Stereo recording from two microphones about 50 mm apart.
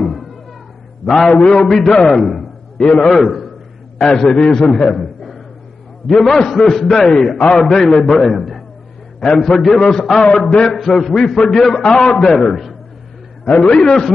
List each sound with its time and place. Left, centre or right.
0.0 s a sound: centre
1.0 s a man's voice: centre
2.8 s a man's voice: left
3.1 s a man's voice: centre
4.9 s a sound: centre
6.0 s a man's voice: centre
13.6 s a man's voice: centre